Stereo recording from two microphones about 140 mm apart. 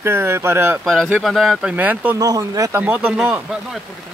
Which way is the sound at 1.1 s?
Centre (ahead or behind).